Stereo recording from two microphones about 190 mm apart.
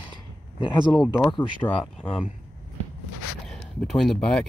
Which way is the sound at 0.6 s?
25° left (ahead or behind).